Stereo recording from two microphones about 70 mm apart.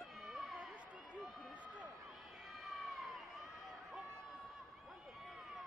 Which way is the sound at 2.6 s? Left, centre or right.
Centre.